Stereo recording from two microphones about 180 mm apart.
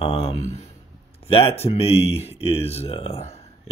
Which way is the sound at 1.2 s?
35° left (ahead or behind).